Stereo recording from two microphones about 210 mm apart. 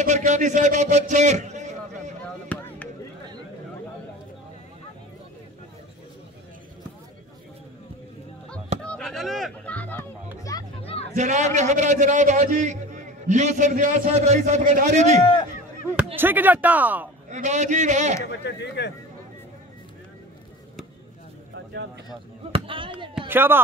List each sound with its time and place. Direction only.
0.0 s a man's voice: 35° right (ahead or behind)
2.2 s chop: 5° left (ahead or behind)
8.8 s music: 5° left (ahead or behind)
10.8 s a sound: 25° left (ahead or behind)
11.1 s a man's voice: 35° right (ahead or behind)
16.2 s speech: 10° right (ahead or behind)
17.3 s a man's voice: 35° right (ahead or behind)
18.2 s speech: 55° left (ahead or behind)
22.5 s speech: 25° right (ahead or behind)
23.1 s speech: 10° right (ahead or behind)